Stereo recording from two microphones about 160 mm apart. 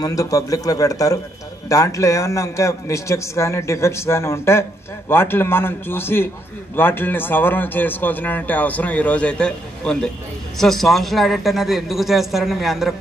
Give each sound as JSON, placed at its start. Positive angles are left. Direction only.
{"t": 0.0, "sound": "a man's voice", "side_deg": 20}